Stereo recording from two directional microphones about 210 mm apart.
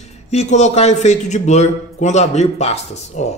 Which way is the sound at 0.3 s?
30° left (ahead or behind).